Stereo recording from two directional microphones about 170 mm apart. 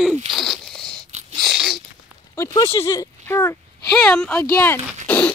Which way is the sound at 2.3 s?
20° left (ahead or behind).